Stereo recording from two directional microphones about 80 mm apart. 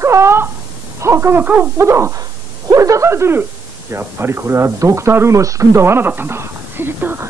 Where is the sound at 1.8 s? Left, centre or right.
Right.